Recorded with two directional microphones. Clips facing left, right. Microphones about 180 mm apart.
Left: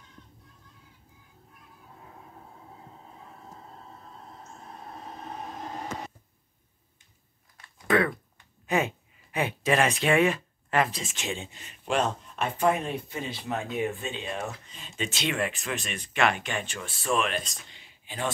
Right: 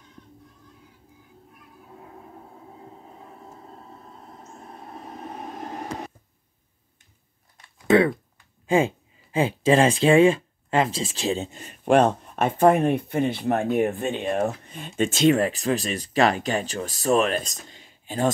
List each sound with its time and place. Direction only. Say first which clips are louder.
7.6 s typing: right 6 dB; 25° right (ahead or behind)
8.6 s speech: right 6 dB; 25° right (ahead or behind)